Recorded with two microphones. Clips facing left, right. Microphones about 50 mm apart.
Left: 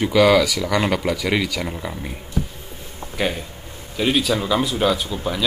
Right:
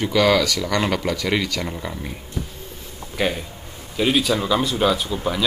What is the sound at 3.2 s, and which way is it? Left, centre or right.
Speech, centre.